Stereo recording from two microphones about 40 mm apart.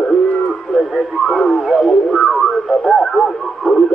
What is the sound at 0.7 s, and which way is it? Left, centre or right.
Radio, centre.